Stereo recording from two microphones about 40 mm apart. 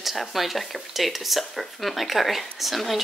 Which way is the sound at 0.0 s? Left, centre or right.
Centre.